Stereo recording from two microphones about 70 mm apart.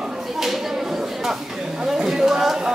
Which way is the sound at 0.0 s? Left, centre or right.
Centre.